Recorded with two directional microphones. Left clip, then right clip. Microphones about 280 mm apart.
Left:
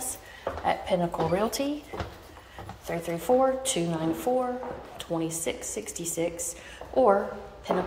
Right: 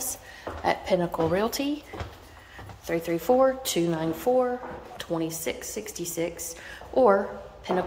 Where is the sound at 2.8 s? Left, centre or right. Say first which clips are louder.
Right 4 dB; centre.